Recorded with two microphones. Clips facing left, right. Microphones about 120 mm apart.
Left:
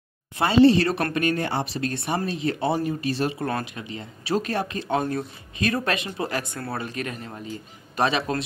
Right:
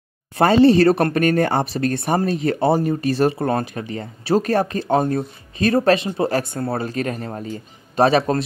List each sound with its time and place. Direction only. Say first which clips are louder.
0.4 s a man's voice: right 4 dB; 45° right (ahead or behind)